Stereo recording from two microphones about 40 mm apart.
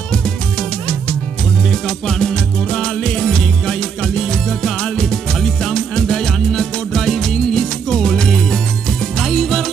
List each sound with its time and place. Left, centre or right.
0.1 s music: left